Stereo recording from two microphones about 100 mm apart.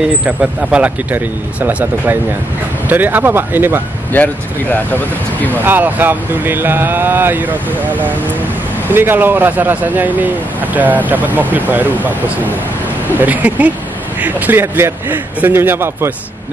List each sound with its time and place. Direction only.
0.2 s speech: 10° right (ahead or behind)
4.1 s speech: 15° left (ahead or behind)
5.6 s speech: 20° right (ahead or behind)
13.1 s speech: 15° right (ahead or behind)